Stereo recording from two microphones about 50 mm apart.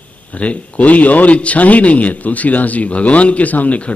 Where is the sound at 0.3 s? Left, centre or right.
Left.